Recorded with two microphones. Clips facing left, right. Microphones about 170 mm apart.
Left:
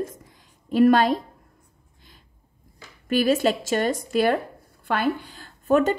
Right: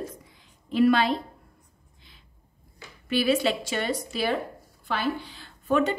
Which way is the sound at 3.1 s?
45° left (ahead or behind).